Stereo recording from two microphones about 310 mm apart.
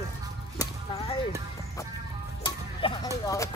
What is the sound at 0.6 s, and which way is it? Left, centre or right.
Music, centre.